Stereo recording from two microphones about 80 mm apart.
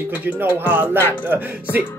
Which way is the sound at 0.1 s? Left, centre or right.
Right.